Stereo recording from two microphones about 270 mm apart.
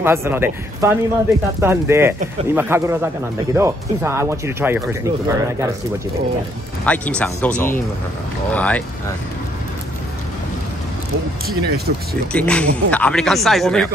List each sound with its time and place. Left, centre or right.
0.0 s speech: centre
6.9 s speech: centre
11.4 s speech: right
12.3 s speech: centre